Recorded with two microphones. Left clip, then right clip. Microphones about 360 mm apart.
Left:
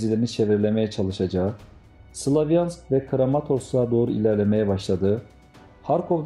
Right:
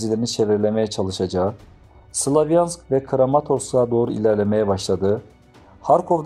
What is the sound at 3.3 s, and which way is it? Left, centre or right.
Speech, right.